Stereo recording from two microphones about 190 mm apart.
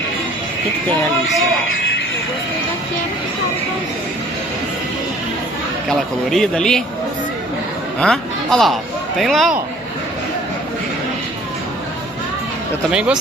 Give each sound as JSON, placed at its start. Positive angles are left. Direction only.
{"t": 5.9, "sound": "speech", "side_deg": 5}
{"t": 8.0, "sound": "speech", "side_deg": 5}
{"t": 12.9, "sound": "speech", "side_deg": -5}